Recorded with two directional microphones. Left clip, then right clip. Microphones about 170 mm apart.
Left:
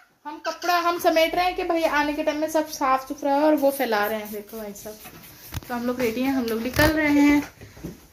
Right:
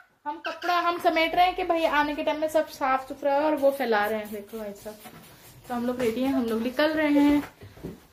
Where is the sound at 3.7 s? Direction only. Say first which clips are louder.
Left 1 dB; 40° left (ahead or behind).